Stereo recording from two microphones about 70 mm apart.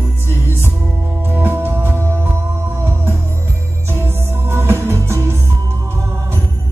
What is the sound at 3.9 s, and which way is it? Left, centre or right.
Music, right.